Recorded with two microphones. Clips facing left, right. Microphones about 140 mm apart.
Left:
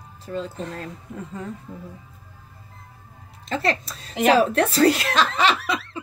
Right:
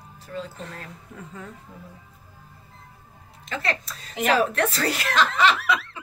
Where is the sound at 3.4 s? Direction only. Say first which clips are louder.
Left 5 dB; 35° left (ahead or behind).